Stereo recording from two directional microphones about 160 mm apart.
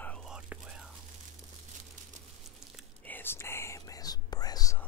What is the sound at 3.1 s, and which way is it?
Whispering, 15° left (ahead or behind).